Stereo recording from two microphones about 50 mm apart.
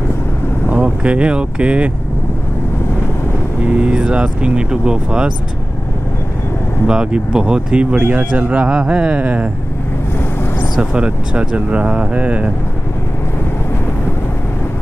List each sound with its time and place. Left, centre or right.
0.7 s speech: right
3.7 s speech: right
6.9 s speech: centre
8.0 s speech: right
10.8 s speech: right